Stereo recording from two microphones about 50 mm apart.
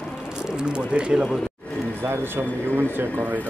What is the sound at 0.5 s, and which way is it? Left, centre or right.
Speech, centre.